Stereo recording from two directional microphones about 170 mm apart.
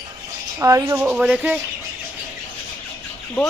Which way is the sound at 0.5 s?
20° right (ahead or behind).